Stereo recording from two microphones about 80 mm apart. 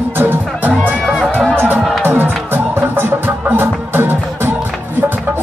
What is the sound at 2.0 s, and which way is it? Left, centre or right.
Music, right.